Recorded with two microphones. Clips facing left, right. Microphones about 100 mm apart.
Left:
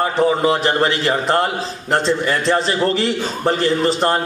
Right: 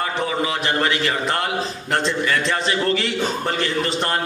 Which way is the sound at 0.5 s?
35° left (ahead or behind).